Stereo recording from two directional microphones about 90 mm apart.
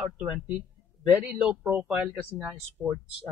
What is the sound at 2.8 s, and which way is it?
Speech, 10° right (ahead or behind).